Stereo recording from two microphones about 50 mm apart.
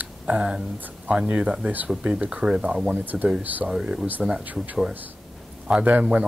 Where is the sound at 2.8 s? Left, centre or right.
Right.